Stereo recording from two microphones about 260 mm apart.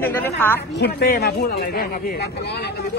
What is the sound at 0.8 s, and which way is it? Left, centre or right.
Speech, left.